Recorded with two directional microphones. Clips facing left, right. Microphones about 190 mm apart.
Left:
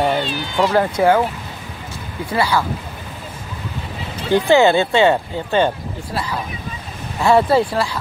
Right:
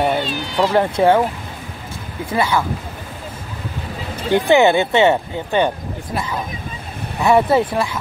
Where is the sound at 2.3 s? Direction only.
20° right (ahead or behind).